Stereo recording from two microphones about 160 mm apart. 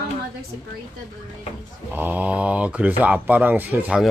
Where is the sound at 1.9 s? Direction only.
10° right (ahead or behind).